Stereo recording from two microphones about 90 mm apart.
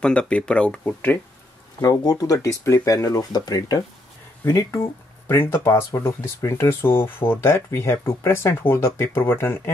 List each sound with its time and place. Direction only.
0.0 s speech: 10° left (ahead or behind)
1.8 s speech: 45° left (ahead or behind)
5.3 s speech: 25° left (ahead or behind)